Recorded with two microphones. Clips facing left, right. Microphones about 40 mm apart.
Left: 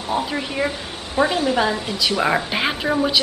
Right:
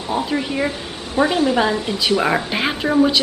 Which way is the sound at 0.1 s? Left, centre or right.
Centre.